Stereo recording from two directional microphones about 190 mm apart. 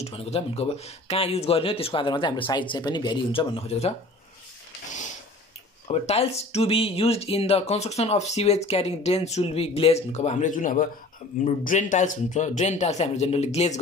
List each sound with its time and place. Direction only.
0.0 s speech: 30° left (ahead or behind)
5.9 s speech: 35° left (ahead or behind)